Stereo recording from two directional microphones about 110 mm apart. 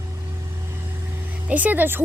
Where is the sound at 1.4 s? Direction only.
15° right (ahead or behind).